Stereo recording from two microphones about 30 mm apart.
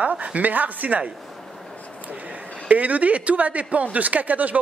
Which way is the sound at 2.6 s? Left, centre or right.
Right.